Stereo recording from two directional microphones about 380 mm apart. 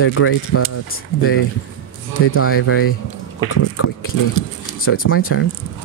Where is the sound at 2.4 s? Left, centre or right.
Left.